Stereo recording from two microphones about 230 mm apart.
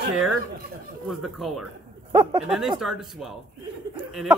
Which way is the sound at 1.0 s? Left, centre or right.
Centre.